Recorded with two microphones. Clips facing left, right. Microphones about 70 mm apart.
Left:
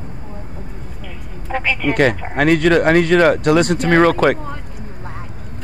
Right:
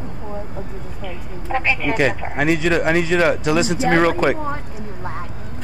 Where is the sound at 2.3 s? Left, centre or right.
Left.